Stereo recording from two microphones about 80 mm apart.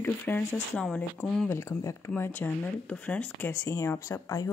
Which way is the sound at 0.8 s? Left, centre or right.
Centre.